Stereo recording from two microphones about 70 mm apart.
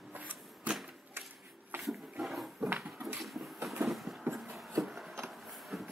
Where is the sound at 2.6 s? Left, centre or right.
Right.